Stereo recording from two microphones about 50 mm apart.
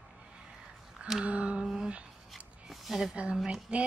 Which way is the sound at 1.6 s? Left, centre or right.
Centre.